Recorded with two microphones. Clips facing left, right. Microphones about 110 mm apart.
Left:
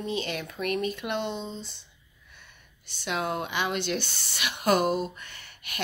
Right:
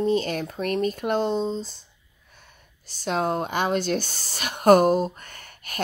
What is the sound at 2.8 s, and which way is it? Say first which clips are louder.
Speech: right 5 dB; 40° right (ahead or behind).